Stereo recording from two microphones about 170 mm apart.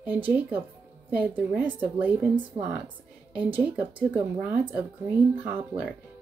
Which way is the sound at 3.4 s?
10° right (ahead or behind).